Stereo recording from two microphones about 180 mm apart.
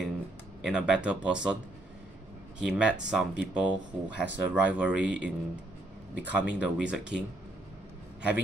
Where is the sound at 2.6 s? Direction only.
5° right (ahead or behind).